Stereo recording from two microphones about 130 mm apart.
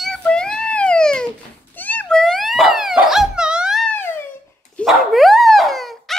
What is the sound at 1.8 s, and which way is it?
Wail, 10° left (ahead or behind).